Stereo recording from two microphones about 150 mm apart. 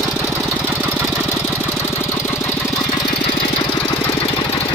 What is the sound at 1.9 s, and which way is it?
Engine, 15° left (ahead or behind).